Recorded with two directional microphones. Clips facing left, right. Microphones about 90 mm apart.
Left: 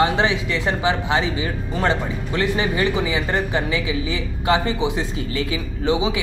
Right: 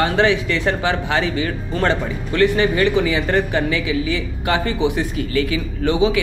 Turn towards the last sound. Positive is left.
turn(degrees=20)  # may be behind; listen again after turning